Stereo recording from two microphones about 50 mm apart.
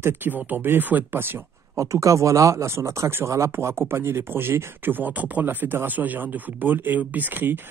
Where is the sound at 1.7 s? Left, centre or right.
Right.